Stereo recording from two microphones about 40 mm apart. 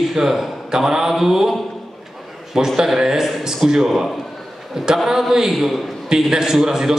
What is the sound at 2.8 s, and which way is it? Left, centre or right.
A man's voice, centre.